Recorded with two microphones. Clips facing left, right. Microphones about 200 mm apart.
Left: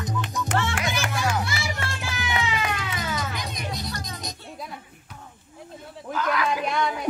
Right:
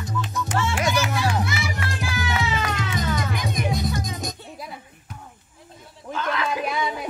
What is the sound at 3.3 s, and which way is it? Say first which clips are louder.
Music: right 7 dB; 50° right (ahead or behind).